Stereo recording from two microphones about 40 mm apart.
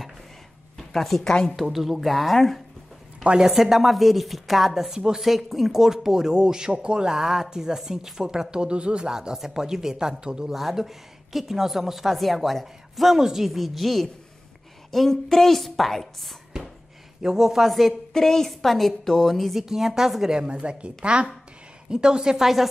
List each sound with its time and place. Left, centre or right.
0.7 s a woman's voice: centre
3.4 s a woman's voice: centre
7.2 s speech: centre
10.5 s a woman's voice: centre
17.2 s speech: centre
17.6 s a woman's voice: centre
18.1 s a woman's voice: centre
19.6 s speech: centre
20.4 s speech: right; by 22.7 s centre